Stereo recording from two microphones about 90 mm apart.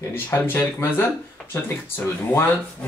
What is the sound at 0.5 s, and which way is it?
Speech, 30° left (ahead or behind).